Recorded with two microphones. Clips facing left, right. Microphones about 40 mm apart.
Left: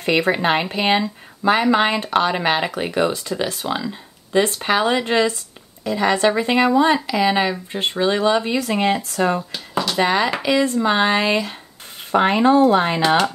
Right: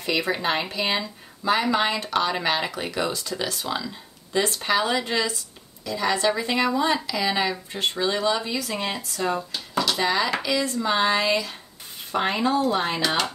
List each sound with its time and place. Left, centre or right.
0.0 s speech: left
4.4 s speech: left
9.8 s a sound: left
10.0 s speech: left